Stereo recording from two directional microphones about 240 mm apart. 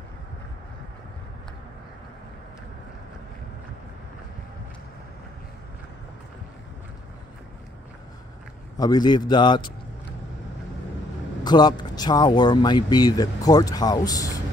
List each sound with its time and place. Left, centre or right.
8.7 s speech: centre
11.4 s speech: centre